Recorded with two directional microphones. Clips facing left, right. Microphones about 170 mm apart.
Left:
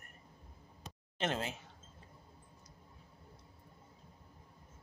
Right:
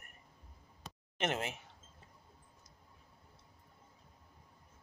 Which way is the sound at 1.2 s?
20° right (ahead or behind).